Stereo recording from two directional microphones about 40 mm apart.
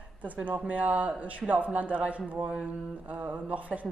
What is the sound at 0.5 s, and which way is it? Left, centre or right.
A man's voice, right.